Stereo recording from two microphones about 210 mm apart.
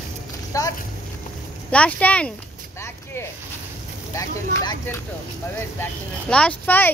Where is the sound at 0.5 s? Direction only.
15° left (ahead or behind).